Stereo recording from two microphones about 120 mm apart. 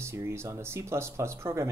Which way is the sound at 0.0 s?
20° right (ahead or behind).